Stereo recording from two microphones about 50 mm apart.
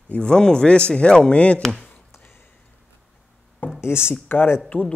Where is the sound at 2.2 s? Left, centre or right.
Left.